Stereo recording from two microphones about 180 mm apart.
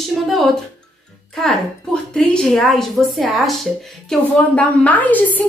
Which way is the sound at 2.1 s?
5° left (ahead or behind).